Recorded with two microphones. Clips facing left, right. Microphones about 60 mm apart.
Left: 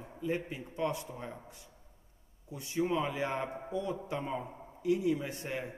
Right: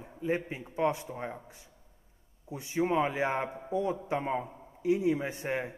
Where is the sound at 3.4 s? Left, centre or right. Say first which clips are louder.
Right 1 dB; centre.